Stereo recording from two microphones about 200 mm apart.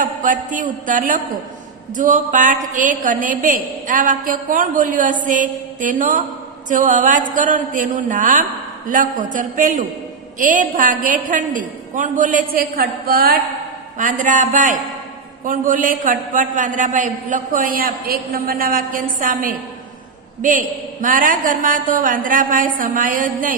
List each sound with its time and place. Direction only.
0.0 s a woman's voice: 40° right (ahead or behind)